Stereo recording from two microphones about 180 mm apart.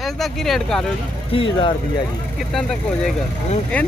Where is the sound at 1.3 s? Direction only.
30° left (ahead or behind).